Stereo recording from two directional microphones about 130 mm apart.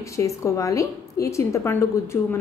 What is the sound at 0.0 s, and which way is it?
A woman's voice, 25° left (ahead or behind).